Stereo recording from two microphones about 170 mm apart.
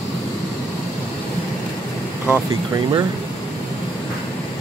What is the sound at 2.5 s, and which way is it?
Speech, 25° right (ahead or behind).